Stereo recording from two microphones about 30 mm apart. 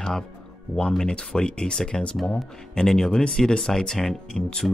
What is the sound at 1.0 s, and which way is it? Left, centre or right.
Speech, left.